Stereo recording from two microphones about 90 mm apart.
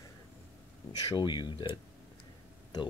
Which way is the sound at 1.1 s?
55° left (ahead or behind).